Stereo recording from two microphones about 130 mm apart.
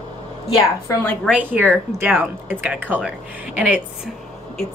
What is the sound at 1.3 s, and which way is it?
Speech, 15° right (ahead or behind).